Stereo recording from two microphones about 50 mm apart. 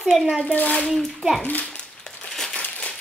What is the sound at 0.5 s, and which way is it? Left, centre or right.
Speech, left.